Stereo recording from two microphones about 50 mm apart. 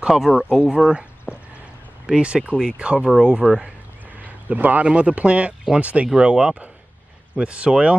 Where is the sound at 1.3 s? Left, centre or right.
Left.